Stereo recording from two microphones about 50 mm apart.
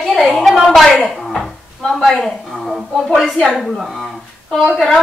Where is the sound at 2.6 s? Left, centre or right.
Centre.